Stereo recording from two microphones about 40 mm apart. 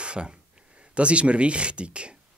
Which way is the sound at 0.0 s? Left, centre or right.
Right.